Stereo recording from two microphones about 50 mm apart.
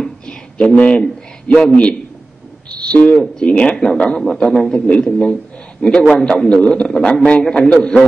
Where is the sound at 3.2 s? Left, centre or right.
Centre.